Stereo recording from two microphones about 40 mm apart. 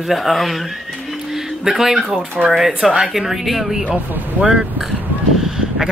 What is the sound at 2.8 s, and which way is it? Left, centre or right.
Speech, right.